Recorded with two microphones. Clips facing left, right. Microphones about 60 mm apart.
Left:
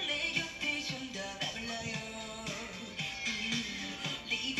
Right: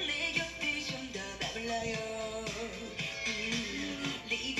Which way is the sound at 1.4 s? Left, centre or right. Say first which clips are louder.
Right 8 dB; right.